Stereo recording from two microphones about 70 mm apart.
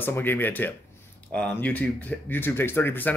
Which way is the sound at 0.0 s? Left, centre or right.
Left.